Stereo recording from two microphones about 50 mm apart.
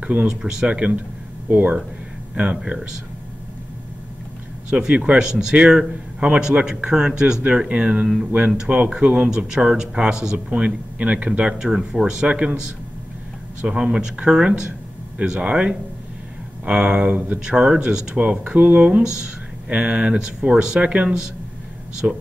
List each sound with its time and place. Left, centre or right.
0.0 s speech: right
0.3 s a man's voice: centre
4.6 s a man's voice: right
9.5 s a man's voice: centre
11.4 s speech: centre
13.7 s a man's voice: centre
18.5 s a man's voice: right
20.2 s speech: centre